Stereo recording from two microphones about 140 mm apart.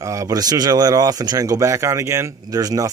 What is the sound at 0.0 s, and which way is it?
Speech, 25° right (ahead or behind).